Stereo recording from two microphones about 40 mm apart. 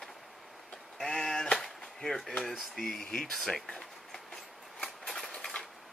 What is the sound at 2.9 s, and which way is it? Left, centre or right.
Speech, left.